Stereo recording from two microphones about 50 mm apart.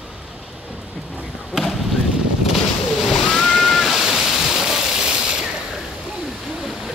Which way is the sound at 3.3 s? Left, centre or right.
Centre.